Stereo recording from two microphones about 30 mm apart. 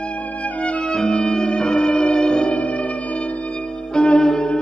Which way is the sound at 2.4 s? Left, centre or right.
Left.